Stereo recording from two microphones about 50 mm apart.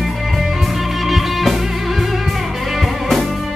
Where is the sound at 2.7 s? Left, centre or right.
Centre.